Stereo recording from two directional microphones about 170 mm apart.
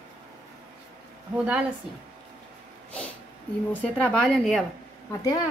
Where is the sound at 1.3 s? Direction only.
10° right (ahead or behind).